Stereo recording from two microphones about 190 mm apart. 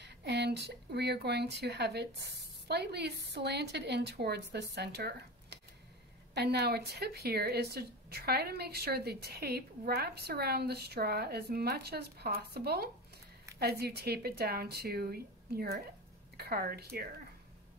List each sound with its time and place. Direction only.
0.0 s speech: 65° right (ahead or behind)